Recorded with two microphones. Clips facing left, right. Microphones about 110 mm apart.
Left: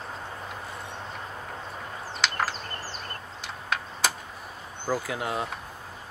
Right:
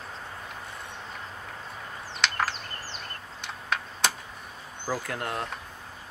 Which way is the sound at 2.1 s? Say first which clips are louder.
Even; centre (ahead or behind).